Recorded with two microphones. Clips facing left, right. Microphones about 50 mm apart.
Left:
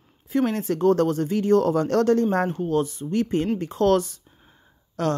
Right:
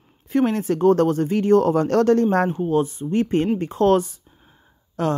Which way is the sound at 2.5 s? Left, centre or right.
Right.